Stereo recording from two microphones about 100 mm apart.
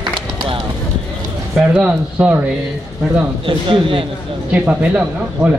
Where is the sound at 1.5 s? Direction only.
10° right (ahead or behind).